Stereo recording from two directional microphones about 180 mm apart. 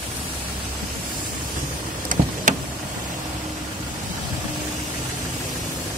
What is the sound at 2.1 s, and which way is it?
Vehicle, 50° right (ahead or behind).